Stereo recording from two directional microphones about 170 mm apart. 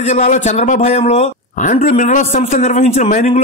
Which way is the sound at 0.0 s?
45° left (ahead or behind).